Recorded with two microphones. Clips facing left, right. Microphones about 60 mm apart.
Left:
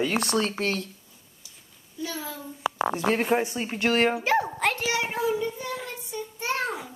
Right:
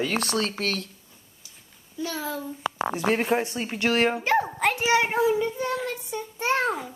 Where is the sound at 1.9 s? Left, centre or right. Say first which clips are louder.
Right 4 dB; right.